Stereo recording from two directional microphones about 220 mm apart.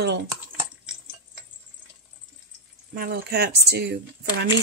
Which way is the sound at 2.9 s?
45° right (ahead or behind).